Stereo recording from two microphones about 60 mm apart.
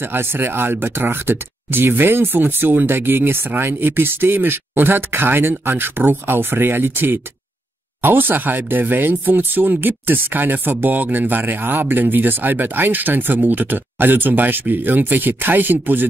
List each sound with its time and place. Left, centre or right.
0.0 s speech: right